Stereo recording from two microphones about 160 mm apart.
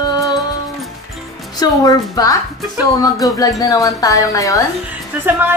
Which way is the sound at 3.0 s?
20° left (ahead or behind).